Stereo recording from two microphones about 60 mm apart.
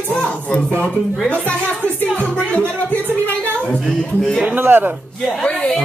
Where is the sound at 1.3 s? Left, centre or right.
Left.